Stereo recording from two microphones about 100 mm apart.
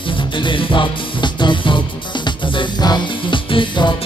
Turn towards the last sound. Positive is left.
turn(degrees=55)  # may be behind; listen again after turning